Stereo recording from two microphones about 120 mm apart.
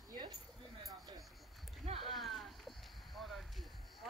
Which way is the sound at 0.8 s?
35° right (ahead or behind).